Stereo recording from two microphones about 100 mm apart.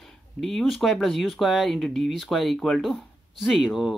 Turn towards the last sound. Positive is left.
turn(degrees=-5)  # may be behind; listen again after turning